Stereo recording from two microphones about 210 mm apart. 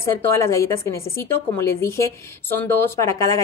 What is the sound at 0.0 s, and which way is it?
Speech, 15° left (ahead or behind).